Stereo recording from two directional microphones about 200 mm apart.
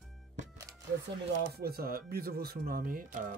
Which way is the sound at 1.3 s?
50° right (ahead or behind).